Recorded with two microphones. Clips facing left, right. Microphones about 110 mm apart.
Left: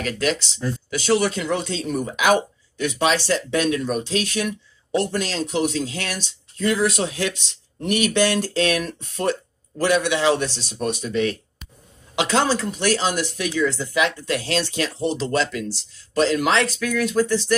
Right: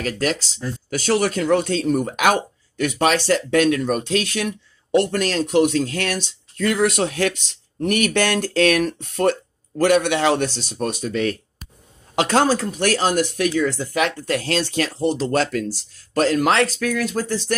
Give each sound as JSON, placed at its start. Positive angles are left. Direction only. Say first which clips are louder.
{"t": 0.0, "sound": "speech", "louder": "right 1 dB", "side_deg": -45}